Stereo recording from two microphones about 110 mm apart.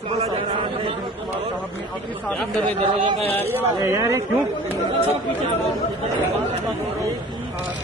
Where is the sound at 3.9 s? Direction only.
25° right (ahead or behind).